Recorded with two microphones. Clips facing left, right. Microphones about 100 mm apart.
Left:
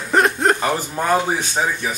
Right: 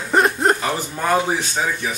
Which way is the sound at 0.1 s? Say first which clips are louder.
Even; centre (ahead or behind).